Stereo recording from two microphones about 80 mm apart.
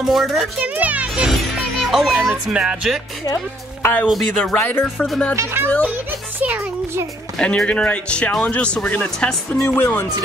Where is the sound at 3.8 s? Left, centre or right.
Left.